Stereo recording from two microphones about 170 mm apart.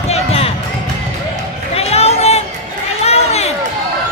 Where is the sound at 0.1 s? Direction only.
35° left (ahead or behind).